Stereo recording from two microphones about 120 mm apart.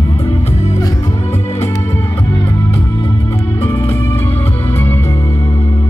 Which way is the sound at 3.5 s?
20° left (ahead or behind).